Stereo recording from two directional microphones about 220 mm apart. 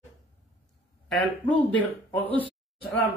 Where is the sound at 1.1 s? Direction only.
Centre (ahead or behind).